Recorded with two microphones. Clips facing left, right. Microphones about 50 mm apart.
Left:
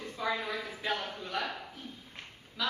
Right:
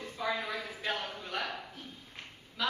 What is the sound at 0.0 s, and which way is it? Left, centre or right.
A woman's voice, centre.